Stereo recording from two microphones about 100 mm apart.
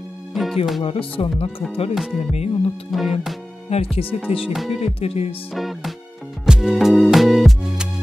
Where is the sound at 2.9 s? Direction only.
Centre (ahead or behind).